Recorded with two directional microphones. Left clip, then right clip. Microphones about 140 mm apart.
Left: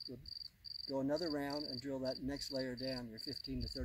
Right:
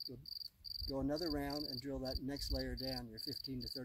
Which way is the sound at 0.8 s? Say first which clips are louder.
Left 2 dB; 15° left (ahead or behind).